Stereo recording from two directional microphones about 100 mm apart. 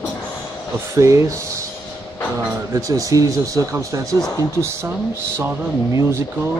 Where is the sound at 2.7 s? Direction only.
35° right (ahead or behind).